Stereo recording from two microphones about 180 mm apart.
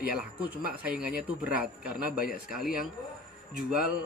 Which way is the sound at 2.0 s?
55° left (ahead or behind).